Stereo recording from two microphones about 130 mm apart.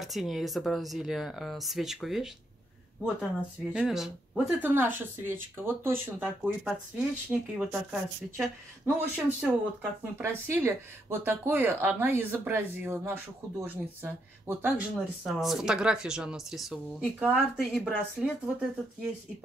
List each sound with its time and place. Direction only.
0.0 s speech: centre (ahead or behind)
3.7 s speech: 5° right (ahead or behind)
6.2 s speech: 5° right (ahead or behind)
15.2 s speech: centre (ahead or behind)